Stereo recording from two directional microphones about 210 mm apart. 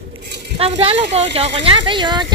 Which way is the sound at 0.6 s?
30° right (ahead or behind).